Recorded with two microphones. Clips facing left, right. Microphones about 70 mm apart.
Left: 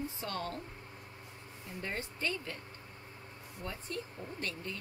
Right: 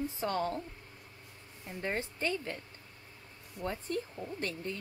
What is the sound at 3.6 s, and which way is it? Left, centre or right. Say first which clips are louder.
Speech: right 6 dB; right.